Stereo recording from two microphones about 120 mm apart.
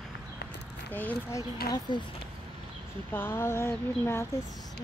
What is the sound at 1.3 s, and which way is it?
Speech, 35° left (ahead or behind).